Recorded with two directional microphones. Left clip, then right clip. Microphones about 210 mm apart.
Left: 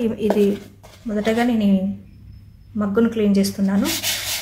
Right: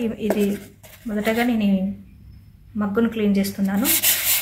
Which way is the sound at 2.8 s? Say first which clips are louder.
Left 3 dB; 10° left (ahead or behind).